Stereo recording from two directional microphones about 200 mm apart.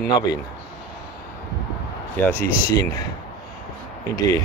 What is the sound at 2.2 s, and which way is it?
Speech, 10° left (ahead or behind).